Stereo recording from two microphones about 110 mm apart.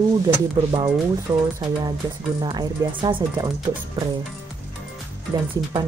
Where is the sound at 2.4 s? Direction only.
45° right (ahead or behind).